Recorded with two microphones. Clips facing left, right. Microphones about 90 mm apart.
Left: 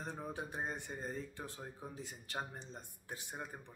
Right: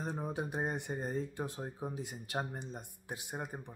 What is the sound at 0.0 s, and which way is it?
Speech, 20° right (ahead or behind).